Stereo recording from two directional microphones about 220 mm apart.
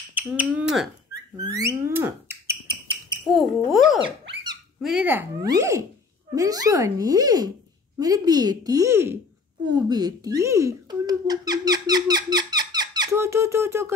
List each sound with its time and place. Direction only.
0.1 s speech: 5° right (ahead or behind)
1.3 s a sound: 15° right (ahead or behind)
3.3 s speech: centre (ahead or behind)